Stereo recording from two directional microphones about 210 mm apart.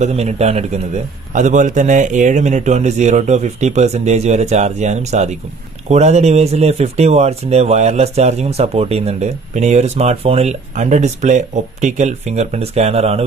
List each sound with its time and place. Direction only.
0.0 s speech: 30° right (ahead or behind)